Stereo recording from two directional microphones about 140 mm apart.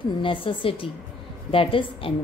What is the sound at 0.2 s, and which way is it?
A woman's voice, 35° left (ahead or behind).